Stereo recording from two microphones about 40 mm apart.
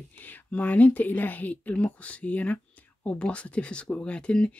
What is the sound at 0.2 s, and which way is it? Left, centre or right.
Speech, left.